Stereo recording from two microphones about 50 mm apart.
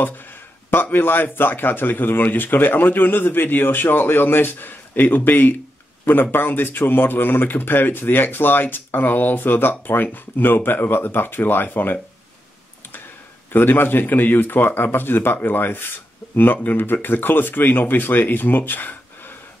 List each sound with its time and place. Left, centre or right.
0.0 s a sound: left
0.9 s speech: left
13.5 s speech: left